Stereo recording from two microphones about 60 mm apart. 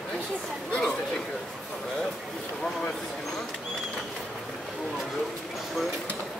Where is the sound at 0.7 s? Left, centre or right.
Left.